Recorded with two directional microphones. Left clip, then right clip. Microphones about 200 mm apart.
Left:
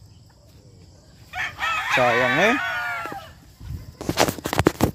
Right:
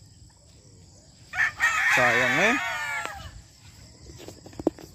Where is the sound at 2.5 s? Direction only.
45° right (ahead or behind).